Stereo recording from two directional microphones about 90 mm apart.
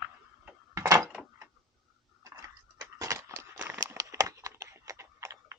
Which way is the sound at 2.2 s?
40° right (ahead or behind).